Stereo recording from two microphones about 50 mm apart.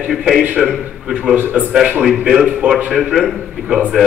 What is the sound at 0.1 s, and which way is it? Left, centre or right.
Speech, centre.